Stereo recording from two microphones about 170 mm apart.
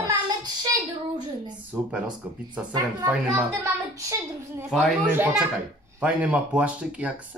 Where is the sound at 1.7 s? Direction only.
10° right (ahead or behind).